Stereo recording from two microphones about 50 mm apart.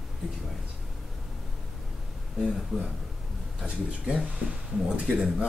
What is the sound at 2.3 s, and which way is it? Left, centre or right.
Speech, centre.